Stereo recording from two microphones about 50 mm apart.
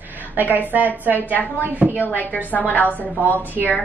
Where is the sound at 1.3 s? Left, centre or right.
Left.